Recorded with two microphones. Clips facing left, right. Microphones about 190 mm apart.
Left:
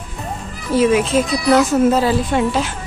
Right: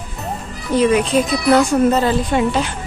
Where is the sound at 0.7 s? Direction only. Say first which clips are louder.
Even; 5° left (ahead or behind).